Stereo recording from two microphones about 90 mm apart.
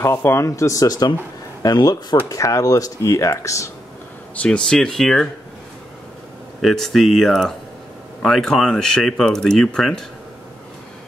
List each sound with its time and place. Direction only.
0.2 s speech: 30° left (ahead or behind)
4.4 s speech: 10° left (ahead or behind)
6.6 s speech: centre (ahead or behind)